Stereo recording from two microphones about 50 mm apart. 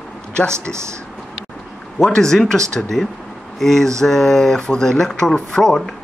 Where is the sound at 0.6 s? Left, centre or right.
Right.